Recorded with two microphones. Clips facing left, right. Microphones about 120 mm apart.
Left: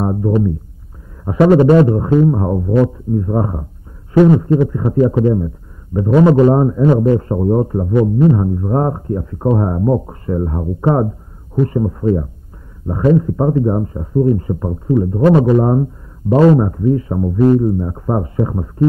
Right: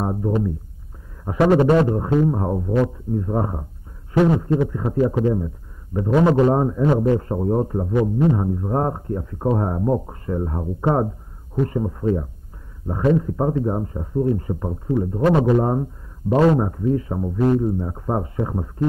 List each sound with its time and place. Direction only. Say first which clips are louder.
0.0 s music: left 6 dB; 30° left (ahead or behind)
1.2 s a man's voice: left 6 dB; 30° left (ahead or behind)